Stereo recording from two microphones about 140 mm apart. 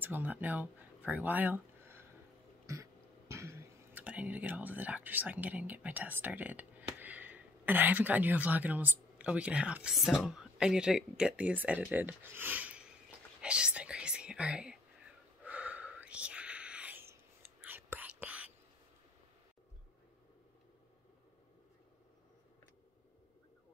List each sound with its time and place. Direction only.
0.0 s speech: 15° right (ahead or behind)
15.4 s whispering: 10° right (ahead or behind)